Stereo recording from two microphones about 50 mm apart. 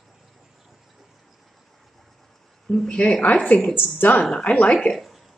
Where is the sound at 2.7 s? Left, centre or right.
Left.